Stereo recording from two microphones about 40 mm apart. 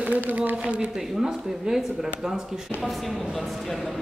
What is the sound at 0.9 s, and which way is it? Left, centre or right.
Speech, centre.